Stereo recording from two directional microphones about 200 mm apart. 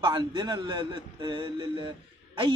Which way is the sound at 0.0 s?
25° right (ahead or behind).